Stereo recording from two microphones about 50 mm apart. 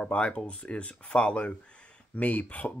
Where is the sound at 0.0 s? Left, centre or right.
Left.